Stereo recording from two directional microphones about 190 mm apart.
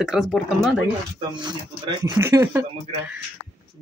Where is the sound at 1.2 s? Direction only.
25° right (ahead or behind).